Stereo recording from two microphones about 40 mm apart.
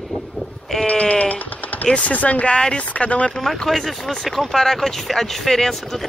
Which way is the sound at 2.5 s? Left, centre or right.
Left.